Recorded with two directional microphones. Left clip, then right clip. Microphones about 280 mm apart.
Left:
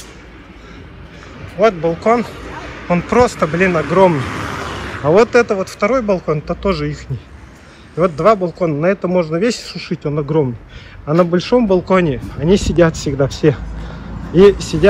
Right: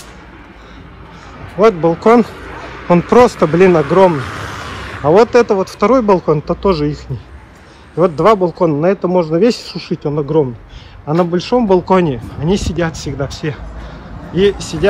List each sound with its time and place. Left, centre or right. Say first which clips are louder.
1.6 s speech: right 3 dB; right
4.3 s a sound: left 2 dB; centre
5.0 s a man's voice: right 2 dB; centre
8.0 s a man's voice: right 2 dB; centre